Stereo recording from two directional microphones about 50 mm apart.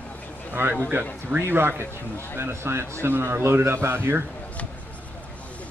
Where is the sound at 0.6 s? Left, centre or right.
Right.